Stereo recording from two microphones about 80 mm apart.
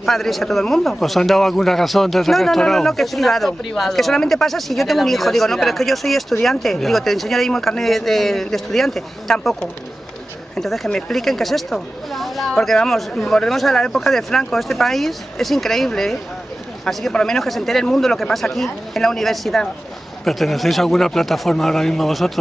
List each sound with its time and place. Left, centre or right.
0.0 s a man's voice: centre